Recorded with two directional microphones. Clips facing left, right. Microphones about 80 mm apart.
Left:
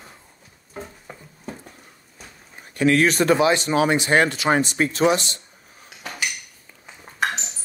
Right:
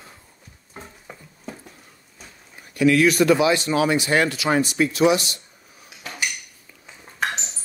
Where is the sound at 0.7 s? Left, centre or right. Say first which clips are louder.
Left 4 dB; centre.